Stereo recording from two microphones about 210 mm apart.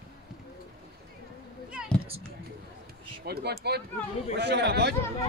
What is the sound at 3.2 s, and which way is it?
A man's voice, 50° right (ahead or behind).